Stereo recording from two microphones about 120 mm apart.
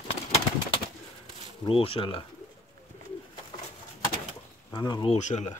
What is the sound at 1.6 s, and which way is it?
Speech, 50° left (ahead or behind).